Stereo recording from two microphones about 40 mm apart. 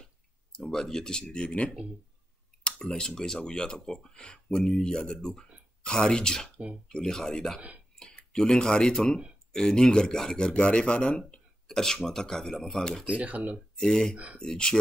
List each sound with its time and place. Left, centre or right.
0.6 s speech: centre
2.8 s speech: centre
4.8 s speech: left
8.1 s speech: left
10.5 s speech: left; by 13.0 s centre
13.1 s speech: right
13.7 s speech: centre
14.1 s speech: right
14.4 s speech: centre